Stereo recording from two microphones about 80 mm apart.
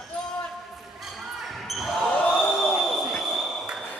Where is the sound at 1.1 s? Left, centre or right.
Centre.